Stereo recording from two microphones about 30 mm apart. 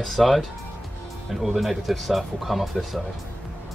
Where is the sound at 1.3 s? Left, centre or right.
Centre.